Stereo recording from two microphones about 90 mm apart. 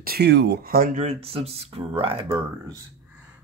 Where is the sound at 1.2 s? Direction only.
90° right.